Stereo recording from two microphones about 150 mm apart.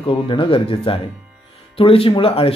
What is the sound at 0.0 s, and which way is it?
Speech, 35° left (ahead or behind).